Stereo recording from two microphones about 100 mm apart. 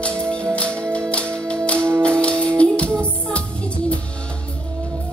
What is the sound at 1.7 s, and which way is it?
Music, 25° right (ahead or behind).